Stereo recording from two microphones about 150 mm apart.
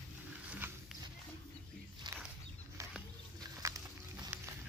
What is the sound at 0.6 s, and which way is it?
Music, 15° right (ahead or behind).